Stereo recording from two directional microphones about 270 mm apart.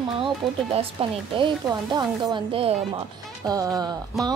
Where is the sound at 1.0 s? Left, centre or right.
Right.